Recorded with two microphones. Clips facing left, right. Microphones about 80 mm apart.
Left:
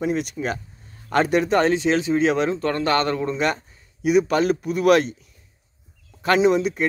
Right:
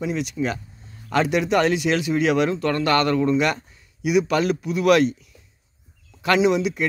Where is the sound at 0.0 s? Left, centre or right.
Left.